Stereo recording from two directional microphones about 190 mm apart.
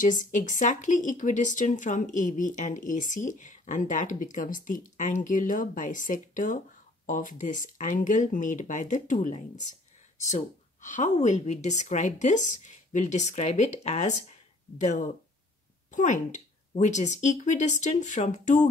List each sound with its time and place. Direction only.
0.0 s a woman's voice: 45° left (ahead or behind)